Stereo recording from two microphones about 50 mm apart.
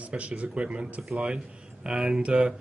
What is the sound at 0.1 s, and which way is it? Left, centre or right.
A man's voice, right.